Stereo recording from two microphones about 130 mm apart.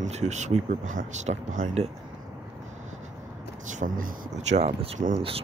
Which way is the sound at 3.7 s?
85° right.